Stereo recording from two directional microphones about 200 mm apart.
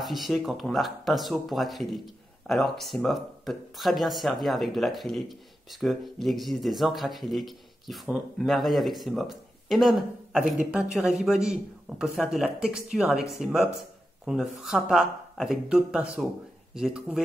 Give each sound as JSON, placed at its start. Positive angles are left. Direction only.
{"t": 0.0, "sound": "speech", "side_deg": 0}